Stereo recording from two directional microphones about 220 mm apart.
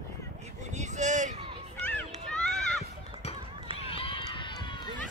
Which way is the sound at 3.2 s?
30° left (ahead or behind).